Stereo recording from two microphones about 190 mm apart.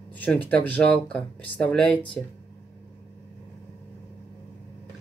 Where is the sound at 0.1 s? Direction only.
10° left (ahead or behind).